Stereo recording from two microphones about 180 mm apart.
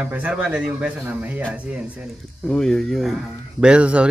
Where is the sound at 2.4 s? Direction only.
5° left (ahead or behind).